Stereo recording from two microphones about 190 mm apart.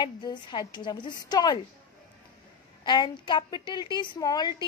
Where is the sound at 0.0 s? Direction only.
25° left (ahead or behind).